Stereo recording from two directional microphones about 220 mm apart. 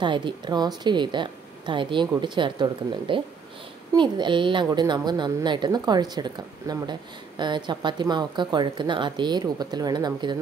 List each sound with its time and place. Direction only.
0.0 s a woman's voice: 20° right (ahead or behind)